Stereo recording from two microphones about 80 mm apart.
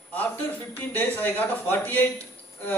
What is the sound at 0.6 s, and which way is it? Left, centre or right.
A man's voice, left.